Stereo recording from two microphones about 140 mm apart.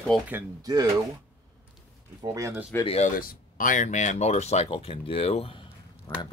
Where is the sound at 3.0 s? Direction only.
85° left.